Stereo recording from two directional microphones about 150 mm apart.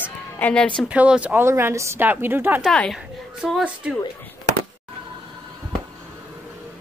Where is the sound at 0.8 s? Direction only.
5° right (ahead or behind).